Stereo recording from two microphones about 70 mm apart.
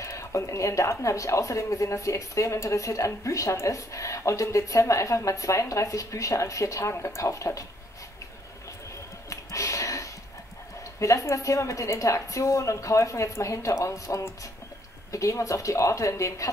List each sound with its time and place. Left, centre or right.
0.0 s a woman's voice: left
9.3 s a sound: left
11.0 s a woman's voice: left